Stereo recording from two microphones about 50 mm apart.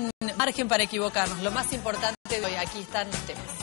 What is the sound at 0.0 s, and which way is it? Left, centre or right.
Speech, left.